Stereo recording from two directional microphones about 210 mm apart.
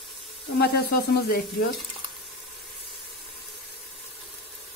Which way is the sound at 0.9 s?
50° left (ahead or behind).